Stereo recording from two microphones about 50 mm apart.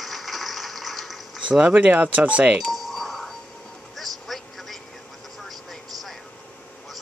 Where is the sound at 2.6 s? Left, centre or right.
Centre.